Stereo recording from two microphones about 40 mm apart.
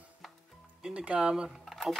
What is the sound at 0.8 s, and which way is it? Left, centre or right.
Speech, right.